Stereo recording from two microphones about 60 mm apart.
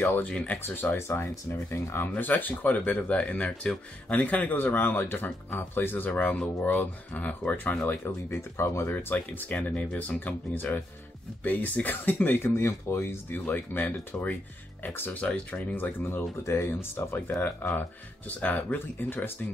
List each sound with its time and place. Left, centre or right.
0.0 s speech: left
4.9 s speech: left
8.3 s speech: left
9.6 s speech: centre
9.9 s speech: left
16.4 s speech: left
18.9 s speech: left